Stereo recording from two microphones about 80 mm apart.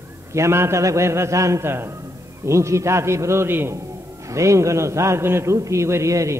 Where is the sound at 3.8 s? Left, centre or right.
Right.